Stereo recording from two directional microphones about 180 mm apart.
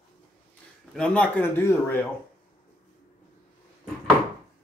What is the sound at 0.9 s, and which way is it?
Speech, 5° left (ahead or behind).